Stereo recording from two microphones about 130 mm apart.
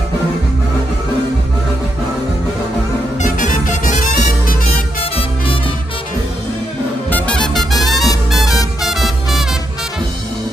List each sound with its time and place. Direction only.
3.2 s music: 85° left
7.1 s music: 10° left (ahead or behind)
7.9 s music: 30° left (ahead or behind)
8.3 s music: centre (ahead or behind)